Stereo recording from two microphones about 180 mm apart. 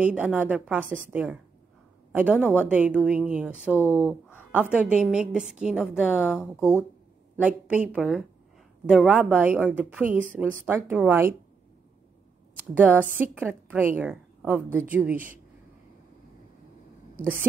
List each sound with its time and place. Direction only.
0.0 s a woman's voice: 10° right (ahead or behind)
12.7 s a woman's voice: 10° right (ahead or behind)
17.2 s a woman's voice: 10° right (ahead or behind)